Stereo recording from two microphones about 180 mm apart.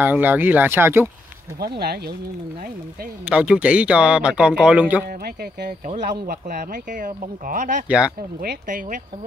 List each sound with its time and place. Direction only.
0.0 s a man's voice: 10° right (ahead or behind)
1.6 s speech: 60° right (ahead or behind)
3.3 s a man's voice: 5° right (ahead or behind)
5.0 s speech: 55° right (ahead or behind)